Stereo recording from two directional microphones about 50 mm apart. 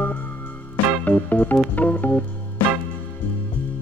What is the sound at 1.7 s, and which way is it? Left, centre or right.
Organ, left.